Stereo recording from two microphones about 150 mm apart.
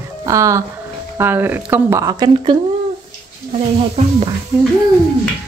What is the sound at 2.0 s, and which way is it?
Speech, 25° right (ahead or behind).